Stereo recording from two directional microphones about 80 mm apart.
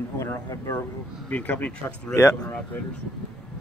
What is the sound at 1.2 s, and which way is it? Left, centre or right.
Speech, centre.